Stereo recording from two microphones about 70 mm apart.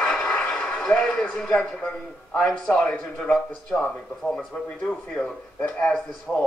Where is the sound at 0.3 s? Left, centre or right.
Centre.